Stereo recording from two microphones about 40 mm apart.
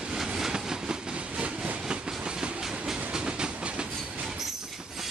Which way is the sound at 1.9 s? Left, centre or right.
Right.